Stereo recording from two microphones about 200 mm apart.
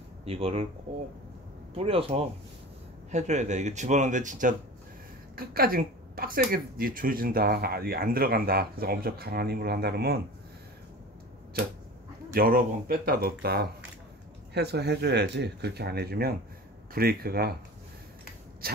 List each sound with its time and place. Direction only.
0.2 s speech: 30° right (ahead or behind)
1.8 s speech: 30° right (ahead or behind); by 10.2 s 50° right (ahead or behind)
12.4 s speech: 50° right (ahead or behind)